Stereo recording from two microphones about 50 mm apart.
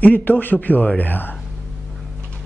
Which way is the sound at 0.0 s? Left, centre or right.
Left.